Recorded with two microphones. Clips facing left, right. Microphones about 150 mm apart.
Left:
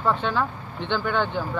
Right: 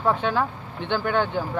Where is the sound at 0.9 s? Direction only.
45° right (ahead or behind).